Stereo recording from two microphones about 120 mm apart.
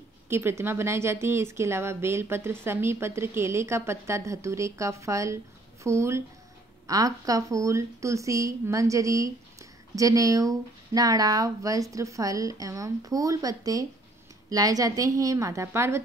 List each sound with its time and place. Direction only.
0.3 s a woman's voice: 20° right (ahead or behind)